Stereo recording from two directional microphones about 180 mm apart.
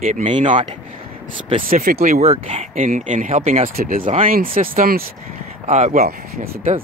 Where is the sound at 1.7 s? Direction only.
55° right (ahead or behind).